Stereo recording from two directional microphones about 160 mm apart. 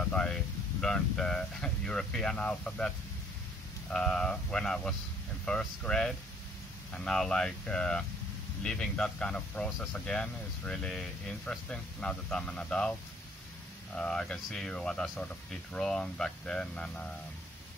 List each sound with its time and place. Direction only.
0.0 s speech: 5° left (ahead or behind)
3.9 s speech: 5° left (ahead or behind)
13.9 s speech: 5° left (ahead or behind)